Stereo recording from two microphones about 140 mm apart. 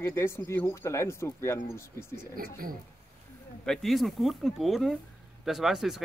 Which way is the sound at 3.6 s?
5° left (ahead or behind).